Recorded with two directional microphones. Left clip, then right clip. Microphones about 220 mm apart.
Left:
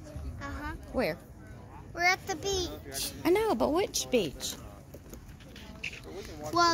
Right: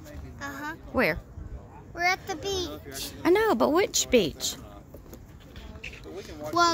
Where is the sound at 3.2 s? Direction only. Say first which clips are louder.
Right 5 dB; 15° right (ahead or behind).